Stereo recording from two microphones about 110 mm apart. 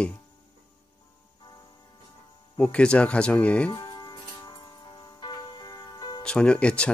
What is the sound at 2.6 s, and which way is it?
Speech, 10° left (ahead or behind).